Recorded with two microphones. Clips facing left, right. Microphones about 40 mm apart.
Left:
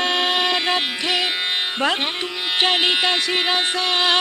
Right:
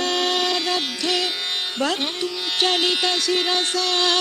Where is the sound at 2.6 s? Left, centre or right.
Left.